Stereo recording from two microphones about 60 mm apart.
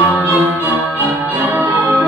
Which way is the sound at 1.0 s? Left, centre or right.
Right.